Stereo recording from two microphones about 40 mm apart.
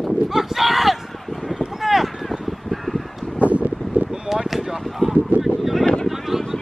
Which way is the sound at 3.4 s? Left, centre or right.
Right.